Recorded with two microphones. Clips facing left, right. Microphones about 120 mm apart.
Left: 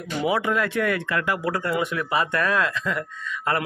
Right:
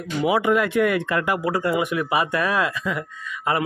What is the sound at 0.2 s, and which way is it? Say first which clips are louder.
Speech: right 4 dB; 15° right (ahead or behind).